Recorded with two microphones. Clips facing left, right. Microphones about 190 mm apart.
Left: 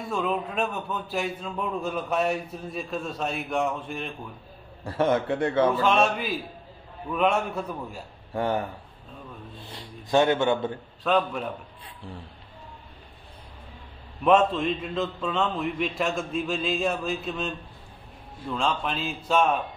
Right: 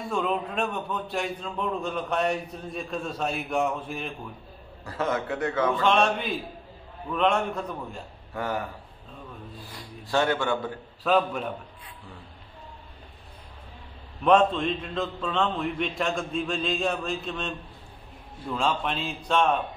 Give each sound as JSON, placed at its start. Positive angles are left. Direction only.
{"t": 0.0, "sound": "a man's voice", "side_deg": 0}
{"t": 4.8, "sound": "speech", "side_deg": 30}
{"t": 5.8, "sound": "a man's voice", "side_deg": 5}
{"t": 8.3, "sound": "speech", "side_deg": 30}
{"t": 11.1, "sound": "a man's voice", "side_deg": 0}
{"t": 14.2, "sound": "a man's voice", "side_deg": 5}